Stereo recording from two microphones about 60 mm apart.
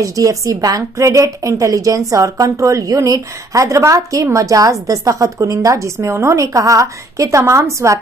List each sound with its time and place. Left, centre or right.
0.0 s a woman's voice: right